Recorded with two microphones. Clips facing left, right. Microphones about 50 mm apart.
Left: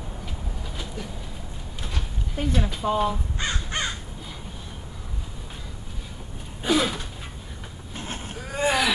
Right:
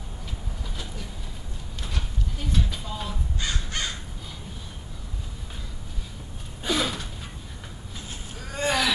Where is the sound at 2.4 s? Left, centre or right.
Left.